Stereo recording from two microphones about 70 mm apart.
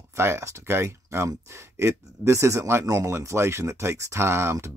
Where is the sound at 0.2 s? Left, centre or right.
Right.